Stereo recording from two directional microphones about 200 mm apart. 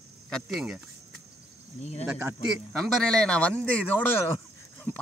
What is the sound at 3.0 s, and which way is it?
A man's voice, 5° left (ahead or behind).